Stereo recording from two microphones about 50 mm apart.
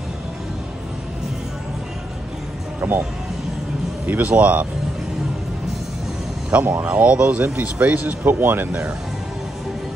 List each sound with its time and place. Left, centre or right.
2.8 s speech: right
4.0 s speech: right
6.6 s speech: right
6.9 s speech: right